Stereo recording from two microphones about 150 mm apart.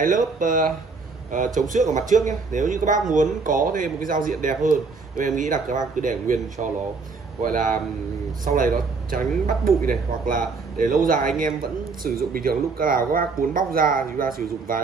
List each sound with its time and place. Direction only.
0.0 s speech: 65° right (ahead or behind)
12.0 s speech: 80° right